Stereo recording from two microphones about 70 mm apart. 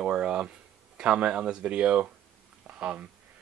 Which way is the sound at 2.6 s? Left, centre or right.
Centre.